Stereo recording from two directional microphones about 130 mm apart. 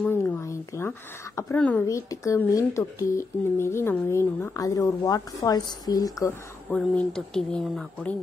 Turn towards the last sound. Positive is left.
turn(degrees=0)  # may be behind; listen again after turning